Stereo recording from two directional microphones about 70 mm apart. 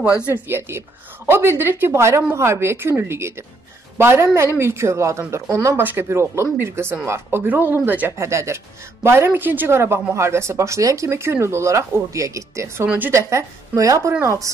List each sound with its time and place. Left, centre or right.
0.3 s a woman's voice: right
5.8 s a woman's voice: right
8.2 s a woman's voice: right
12.8 s speech: right
13.3 s speech: right